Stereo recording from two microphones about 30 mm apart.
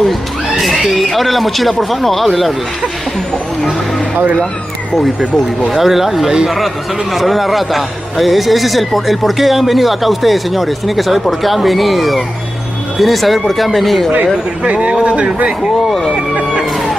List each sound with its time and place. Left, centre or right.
0.6 s speech: centre
5.7 s speech: centre
14.7 s a man's voice: right